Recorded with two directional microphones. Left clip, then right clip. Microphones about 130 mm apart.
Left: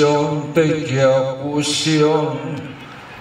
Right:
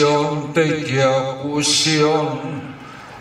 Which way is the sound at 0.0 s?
40° right (ahead or behind).